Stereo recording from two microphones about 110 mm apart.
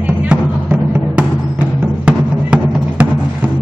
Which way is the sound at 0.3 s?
10° right (ahead or behind).